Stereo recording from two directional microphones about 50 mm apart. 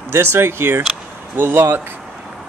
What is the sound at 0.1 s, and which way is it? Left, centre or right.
Speech, right.